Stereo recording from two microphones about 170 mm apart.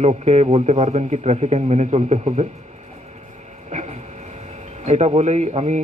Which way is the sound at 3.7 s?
45° right (ahead or behind).